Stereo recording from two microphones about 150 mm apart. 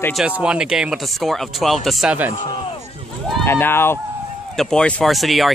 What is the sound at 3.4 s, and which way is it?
Speech, 15° left (ahead or behind).